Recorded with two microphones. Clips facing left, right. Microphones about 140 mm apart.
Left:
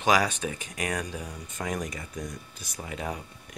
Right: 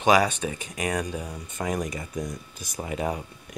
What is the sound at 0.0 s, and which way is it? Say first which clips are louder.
Speech: right 4 dB; centre (ahead or behind).